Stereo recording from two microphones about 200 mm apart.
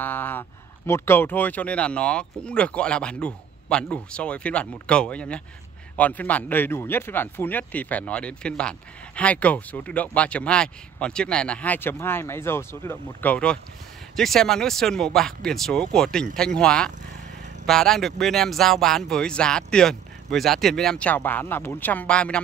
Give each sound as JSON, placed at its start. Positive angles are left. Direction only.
{"t": 0.0, "sound": "speech", "side_deg": 10}